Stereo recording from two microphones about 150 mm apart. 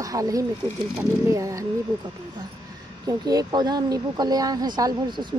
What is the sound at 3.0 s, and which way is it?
Speech, 25° right (ahead or behind).